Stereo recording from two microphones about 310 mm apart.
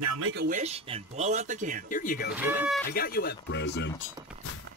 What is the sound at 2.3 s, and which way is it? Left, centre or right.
Speech, centre.